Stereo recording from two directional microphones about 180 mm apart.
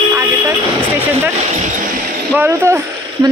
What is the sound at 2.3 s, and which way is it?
Speech, 10° right (ahead or behind).